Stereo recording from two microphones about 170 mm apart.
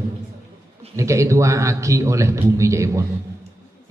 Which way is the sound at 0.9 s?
15° right (ahead or behind).